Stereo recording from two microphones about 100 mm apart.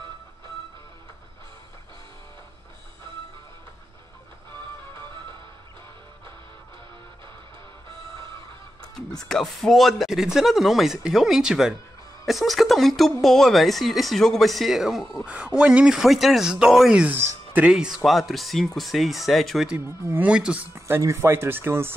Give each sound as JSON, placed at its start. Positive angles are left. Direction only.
{"t": 9.2, "sound": "speech", "side_deg": 5}
{"t": 19.8, "sound": "speech", "side_deg": -25}
{"t": 20.2, "sound": "speech", "side_deg": -10}
{"t": 20.7, "sound": "speech", "side_deg": -30}